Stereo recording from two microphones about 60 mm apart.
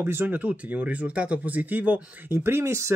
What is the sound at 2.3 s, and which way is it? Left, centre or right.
Speech, right.